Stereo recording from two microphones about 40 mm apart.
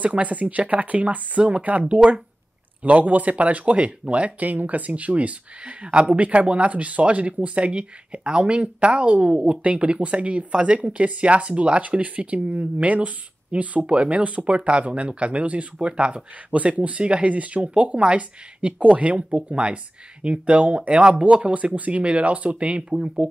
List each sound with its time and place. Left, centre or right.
0.0 s speech: right
22.8 s speech: right